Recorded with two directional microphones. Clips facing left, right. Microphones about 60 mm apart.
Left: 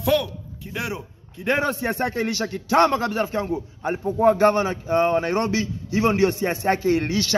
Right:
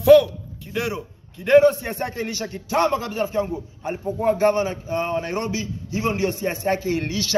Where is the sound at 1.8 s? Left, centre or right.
Left.